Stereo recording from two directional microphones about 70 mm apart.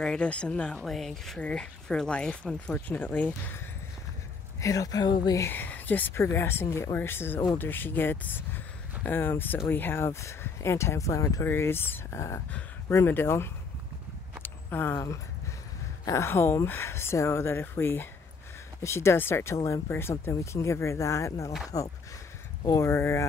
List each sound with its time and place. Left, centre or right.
0.0 s speech: centre
0.8 s speech: centre
2.9 s speech: left
4.6 s speech: left
5.5 s speech: left
6.1 s speech: left
11.4 s speech: left
14.4 s a sound: left
16.1 s speech: left
22.8 s speech: left